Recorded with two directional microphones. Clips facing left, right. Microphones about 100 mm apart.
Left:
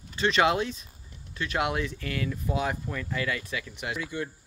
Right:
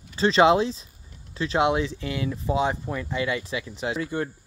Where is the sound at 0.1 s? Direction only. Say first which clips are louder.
Right 6 dB; 30° right (ahead or behind).